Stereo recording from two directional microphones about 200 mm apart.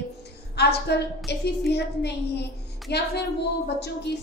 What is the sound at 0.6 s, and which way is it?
A woman's voice, 55° left (ahead or behind).